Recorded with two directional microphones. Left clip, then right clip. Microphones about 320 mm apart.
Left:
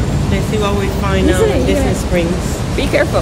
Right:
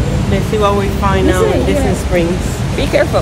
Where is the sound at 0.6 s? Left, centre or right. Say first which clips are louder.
Right 4 dB; centre.